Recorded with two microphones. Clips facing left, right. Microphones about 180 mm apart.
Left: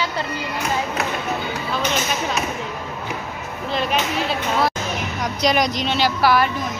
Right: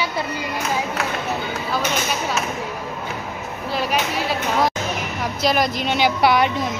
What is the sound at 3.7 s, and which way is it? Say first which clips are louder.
A woman's voice: left 1 dB; 10° right (ahead or behind).